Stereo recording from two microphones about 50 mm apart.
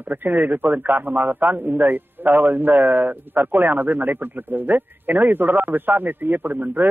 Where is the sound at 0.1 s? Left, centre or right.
Right.